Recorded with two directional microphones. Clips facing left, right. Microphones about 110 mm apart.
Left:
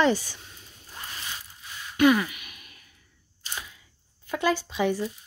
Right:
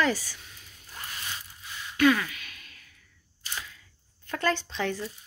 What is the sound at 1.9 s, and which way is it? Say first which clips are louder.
Sigh: left 3 dB; 20° left (ahead or behind).